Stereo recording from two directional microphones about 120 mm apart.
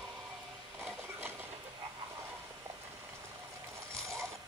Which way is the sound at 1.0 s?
20° right (ahead or behind).